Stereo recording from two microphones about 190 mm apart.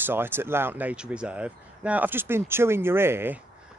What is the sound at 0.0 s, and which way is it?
Speech, 10° right (ahead or behind).